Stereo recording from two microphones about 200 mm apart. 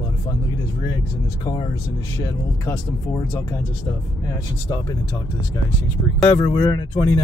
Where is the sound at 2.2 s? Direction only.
15° left (ahead or behind).